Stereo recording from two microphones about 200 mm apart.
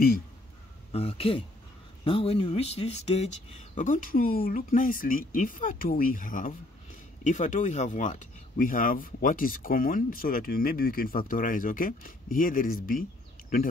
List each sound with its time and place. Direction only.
0.9 s speech: 30° left (ahead or behind); by 13.0 s 45° left (ahead or behind)